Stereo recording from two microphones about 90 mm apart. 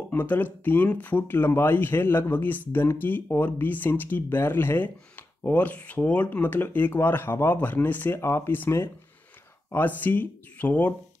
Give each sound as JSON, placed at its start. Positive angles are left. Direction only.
{"t": 0.1, "sound": "speech", "side_deg": 20}